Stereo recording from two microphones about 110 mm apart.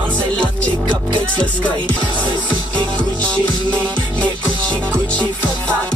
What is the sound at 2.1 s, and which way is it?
Music, 45° right (ahead or behind).